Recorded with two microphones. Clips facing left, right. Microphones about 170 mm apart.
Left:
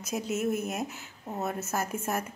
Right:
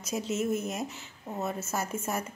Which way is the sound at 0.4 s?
60° left (ahead or behind).